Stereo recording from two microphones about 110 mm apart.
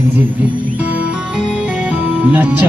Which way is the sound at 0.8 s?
5° right (ahead or behind).